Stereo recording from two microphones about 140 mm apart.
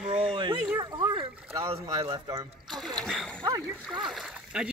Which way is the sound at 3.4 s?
25° right (ahead or behind).